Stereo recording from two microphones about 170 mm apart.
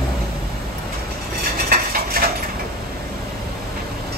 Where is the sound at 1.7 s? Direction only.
60° right (ahead or behind).